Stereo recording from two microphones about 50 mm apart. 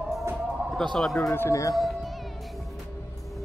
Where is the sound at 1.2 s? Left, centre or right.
Left.